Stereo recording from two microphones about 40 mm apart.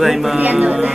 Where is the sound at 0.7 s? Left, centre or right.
Right.